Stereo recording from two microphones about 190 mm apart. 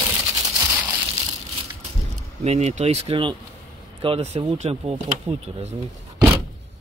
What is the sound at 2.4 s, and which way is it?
Speech, 35° right (ahead or behind).